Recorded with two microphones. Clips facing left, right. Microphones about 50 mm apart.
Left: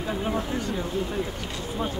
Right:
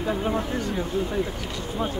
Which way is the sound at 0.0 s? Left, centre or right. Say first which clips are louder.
Right 2 dB; centre.